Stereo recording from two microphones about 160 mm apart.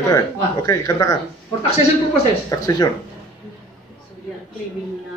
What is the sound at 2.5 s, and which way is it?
Speech, 25° left (ahead or behind).